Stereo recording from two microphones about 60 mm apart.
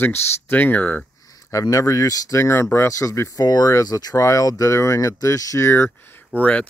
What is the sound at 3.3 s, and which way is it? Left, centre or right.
Speech, left.